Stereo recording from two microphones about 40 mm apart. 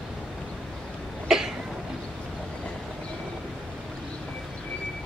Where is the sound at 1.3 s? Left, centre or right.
Centre.